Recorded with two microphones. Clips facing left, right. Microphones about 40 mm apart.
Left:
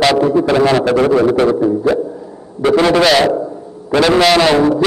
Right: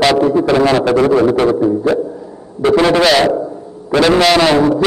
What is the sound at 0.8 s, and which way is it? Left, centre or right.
Speech, left.